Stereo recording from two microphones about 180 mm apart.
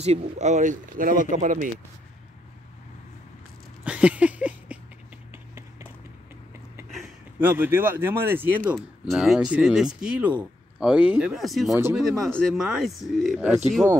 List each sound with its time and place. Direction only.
0.0 s speech: 35° right (ahead or behind)
3.8 s a sound: 5° right (ahead or behind)
5.3 s clip-clop: 15° right (ahead or behind)
6.9 s a sound: centre (ahead or behind)
7.4 s speech: 10° right (ahead or behind)
8.7 s speech: centre (ahead or behind)